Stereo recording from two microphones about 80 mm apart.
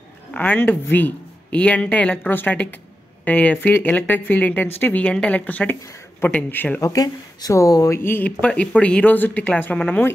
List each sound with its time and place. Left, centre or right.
0.3 s a woman's voice: centre
6.8 s speech: left
8.0 s a woman's voice: left